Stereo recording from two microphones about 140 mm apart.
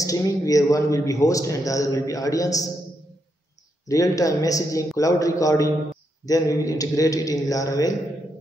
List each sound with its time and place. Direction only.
0.0 s a man's voice: 25° left (ahead or behind)
3.8 s a man's voice: 25° left (ahead or behind)